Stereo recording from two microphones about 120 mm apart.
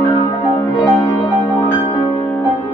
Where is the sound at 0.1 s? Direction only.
30° left (ahead or behind).